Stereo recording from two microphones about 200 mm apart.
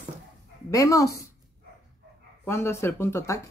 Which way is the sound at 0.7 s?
15° left (ahead or behind).